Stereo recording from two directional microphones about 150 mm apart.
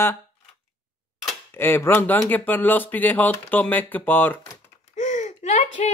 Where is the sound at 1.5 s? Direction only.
15° left (ahead or behind).